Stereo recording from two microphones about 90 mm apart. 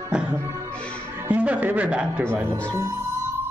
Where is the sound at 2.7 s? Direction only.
35° right (ahead or behind).